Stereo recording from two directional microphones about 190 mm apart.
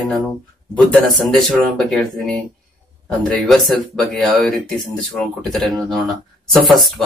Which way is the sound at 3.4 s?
Centre (ahead or behind).